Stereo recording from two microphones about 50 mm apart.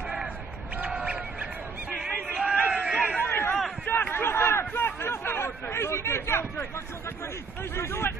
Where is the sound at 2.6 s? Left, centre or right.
Right.